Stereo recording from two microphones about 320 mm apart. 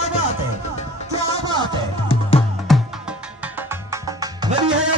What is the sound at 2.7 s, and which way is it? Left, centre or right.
Music, centre.